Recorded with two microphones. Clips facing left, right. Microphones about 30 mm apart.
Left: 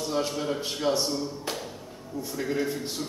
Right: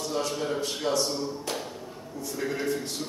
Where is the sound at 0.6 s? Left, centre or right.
Centre.